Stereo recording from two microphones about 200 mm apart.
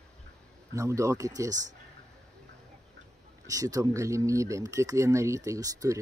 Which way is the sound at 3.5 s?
15° right (ahead or behind).